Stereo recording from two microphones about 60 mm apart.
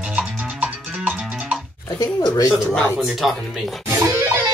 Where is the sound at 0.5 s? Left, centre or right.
Right.